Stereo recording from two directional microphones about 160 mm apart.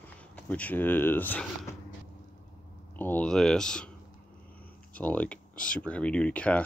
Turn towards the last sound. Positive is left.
turn(degrees=10)  # may be behind; listen again after turning